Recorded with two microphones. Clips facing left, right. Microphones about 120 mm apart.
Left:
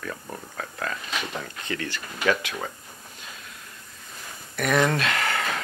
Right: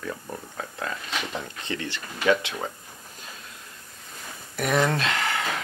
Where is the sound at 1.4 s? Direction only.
25° right (ahead or behind).